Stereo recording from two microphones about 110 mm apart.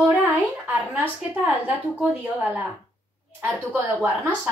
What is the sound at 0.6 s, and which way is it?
A woman's voice, 15° right (ahead or behind).